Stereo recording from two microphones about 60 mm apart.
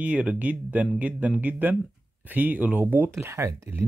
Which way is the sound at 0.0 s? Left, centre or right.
Right.